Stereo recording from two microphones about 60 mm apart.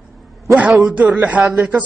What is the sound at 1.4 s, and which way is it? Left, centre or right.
Speech, right.